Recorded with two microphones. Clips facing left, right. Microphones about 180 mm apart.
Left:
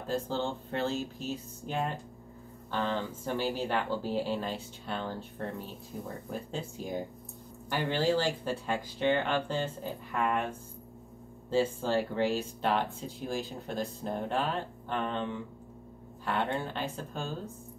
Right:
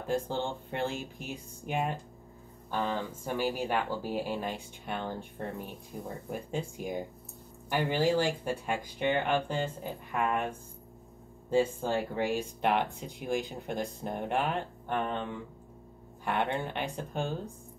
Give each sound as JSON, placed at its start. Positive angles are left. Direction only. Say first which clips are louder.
{"t": 0.0, "sound": "speech", "louder": "right 1 dB", "side_deg": -15}
{"t": 11.5, "sound": "speech", "louder": "even", "side_deg": -15}
{"t": 16.3, "sound": "speech", "louder": "right 1 dB", "side_deg": -15}